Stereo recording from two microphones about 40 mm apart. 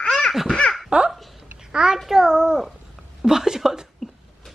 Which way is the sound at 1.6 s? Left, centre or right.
Centre.